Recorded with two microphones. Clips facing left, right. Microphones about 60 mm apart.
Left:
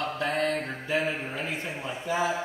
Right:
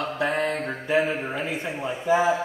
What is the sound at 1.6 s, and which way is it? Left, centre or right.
Speech, right.